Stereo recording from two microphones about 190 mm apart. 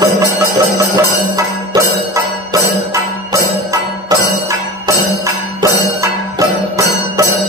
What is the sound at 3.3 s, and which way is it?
Music, 15° right (ahead or behind).